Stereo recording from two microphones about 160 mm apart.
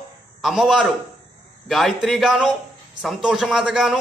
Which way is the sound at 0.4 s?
Centre (ahead or behind).